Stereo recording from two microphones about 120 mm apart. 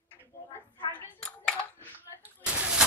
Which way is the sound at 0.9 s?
15° left (ahead or behind).